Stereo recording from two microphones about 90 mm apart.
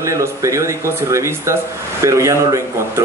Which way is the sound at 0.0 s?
35° right (ahead or behind).